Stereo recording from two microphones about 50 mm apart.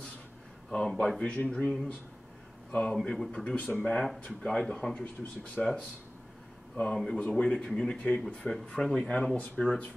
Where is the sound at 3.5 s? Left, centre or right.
Left.